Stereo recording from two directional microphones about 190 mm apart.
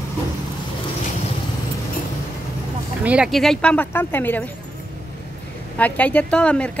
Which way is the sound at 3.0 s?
5° right (ahead or behind).